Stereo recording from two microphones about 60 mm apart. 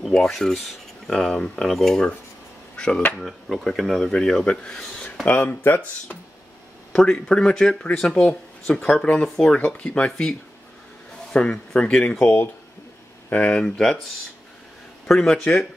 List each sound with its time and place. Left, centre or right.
0.3 s speech: centre
2.8 s speech: left
3.2 s speech: centre
5.2 s speech: left
6.9 s speech: centre
11.3 s speech: centre
13.6 s speech: centre
15.3 s speech: centre